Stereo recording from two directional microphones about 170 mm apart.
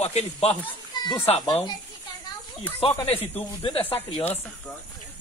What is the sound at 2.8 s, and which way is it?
Speech, 35° left (ahead or behind).